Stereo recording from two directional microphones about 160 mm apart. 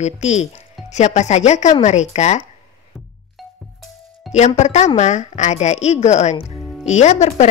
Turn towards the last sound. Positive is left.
turn(degrees=45)  # may be behind; listen again after turning